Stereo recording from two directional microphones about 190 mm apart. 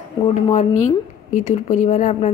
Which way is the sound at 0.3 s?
40° left (ahead or behind).